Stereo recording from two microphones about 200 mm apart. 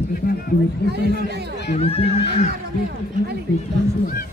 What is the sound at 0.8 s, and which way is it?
Speech, 55° right (ahead or behind).